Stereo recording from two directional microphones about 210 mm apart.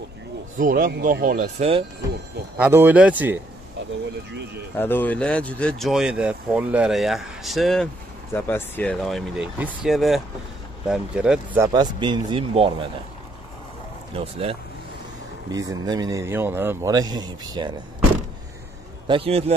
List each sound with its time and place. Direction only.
0.6 s speech: 40° right (ahead or behind)
2.5 s a man's voice: 10° right (ahead or behind)
4.7 s speech: 10° left (ahead or behind)
11.6 s speech: 20° right (ahead or behind)
14.1 s speech: 25° right (ahead or behind)
15.5 s a man's voice: 15° right (ahead or behind)
19.0 s speech: 25° right (ahead or behind)